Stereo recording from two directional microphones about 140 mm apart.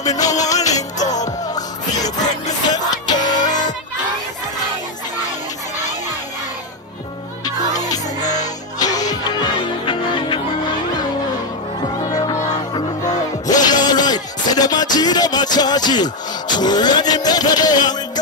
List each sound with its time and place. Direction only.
0.0 s music: 25° left (ahead or behind)
0.6 s music: 55° left (ahead or behind)
1.5 s music: 25° left (ahead or behind)
3.3 s music: 60° left (ahead or behind)
8.7 s music: 25° left (ahead or behind)
12.0 s music: 25° left (ahead or behind)